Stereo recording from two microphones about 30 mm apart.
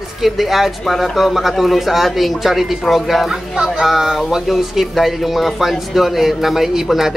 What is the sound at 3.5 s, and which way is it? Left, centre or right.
Speech, right.